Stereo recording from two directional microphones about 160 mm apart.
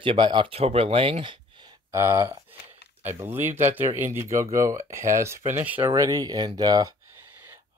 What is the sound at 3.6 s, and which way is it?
Speech, 45° right (ahead or behind).